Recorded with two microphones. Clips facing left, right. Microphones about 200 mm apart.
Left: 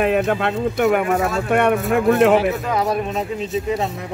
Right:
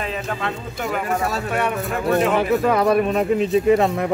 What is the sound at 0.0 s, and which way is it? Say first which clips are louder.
Speech: left 8 dB; 60° left (ahead or behind).